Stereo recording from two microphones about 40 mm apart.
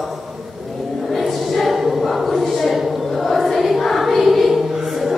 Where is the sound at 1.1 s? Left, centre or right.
Centre.